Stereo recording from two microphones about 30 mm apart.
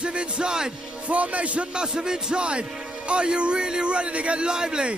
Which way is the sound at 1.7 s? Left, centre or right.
Right.